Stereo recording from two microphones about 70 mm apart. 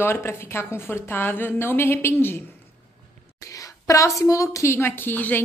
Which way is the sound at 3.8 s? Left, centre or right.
Left.